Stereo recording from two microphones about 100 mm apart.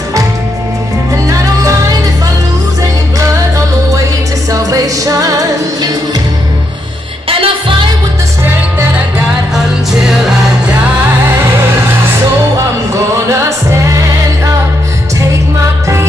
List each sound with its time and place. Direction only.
1.1 s music: 30° right (ahead or behind)
4.5 s music: 35° right (ahead or behind)
7.2 s music: 70° right (ahead or behind)
10.0 s music: 5° right (ahead or behind)